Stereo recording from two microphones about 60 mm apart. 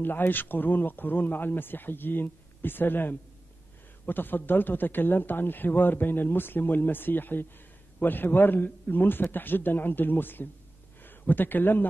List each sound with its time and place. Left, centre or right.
0.0 s a man's voice: left